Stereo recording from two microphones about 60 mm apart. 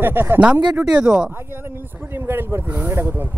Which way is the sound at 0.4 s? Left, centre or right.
Centre.